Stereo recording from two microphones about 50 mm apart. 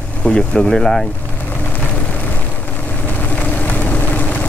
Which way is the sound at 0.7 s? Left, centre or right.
Centre.